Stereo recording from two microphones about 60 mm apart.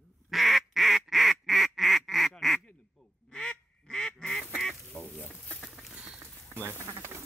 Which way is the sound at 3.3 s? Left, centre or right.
Centre.